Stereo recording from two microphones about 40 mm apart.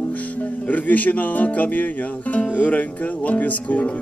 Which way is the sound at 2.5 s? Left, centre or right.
Left.